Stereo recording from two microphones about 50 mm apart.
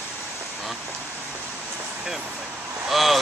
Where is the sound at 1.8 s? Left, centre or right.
Centre.